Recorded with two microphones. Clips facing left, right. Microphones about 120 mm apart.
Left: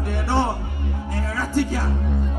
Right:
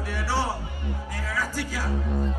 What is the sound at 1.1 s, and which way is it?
Music, 25° left (ahead or behind).